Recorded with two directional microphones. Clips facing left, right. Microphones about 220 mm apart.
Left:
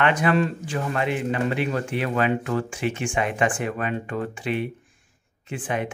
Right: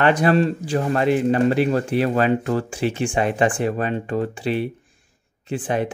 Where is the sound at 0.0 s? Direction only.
35° right (ahead or behind).